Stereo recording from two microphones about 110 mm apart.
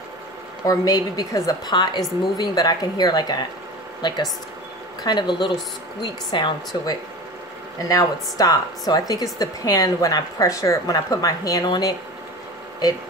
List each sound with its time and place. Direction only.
0.7 s a woman's voice: 35° left (ahead or behind)
7.9 s a woman's voice: 30° left (ahead or behind)